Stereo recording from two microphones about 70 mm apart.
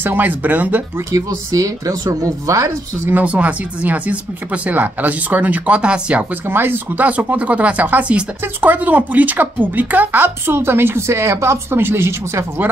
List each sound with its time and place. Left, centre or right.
0.0 s speech: right
1.1 s speech: right
3.1 s speech: right
6.5 s speech: right